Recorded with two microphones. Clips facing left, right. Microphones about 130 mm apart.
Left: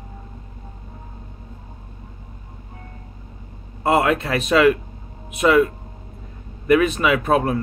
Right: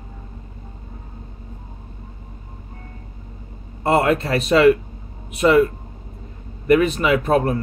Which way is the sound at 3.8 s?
30° right (ahead or behind).